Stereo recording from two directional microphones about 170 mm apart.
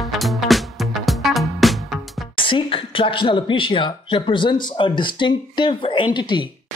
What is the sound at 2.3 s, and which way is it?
Speech, 30° left (ahead or behind).